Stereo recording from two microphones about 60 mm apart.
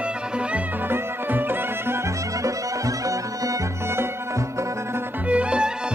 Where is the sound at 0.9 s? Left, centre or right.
Right.